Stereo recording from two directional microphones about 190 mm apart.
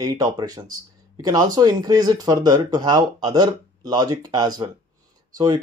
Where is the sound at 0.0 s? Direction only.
20° right (ahead or behind).